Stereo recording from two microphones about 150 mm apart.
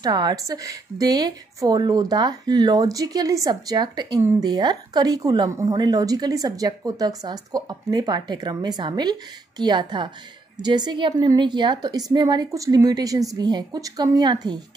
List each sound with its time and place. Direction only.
0.0 s a woman's voice: 30° right (ahead or behind)